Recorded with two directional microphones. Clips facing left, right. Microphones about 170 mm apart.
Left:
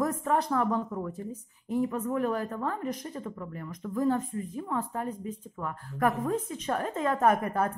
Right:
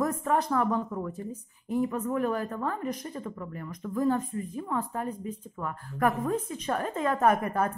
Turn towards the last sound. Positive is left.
turn(degrees=30)  # may be behind; listen again after turning